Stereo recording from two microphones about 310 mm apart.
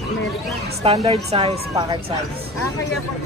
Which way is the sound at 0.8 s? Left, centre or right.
Centre.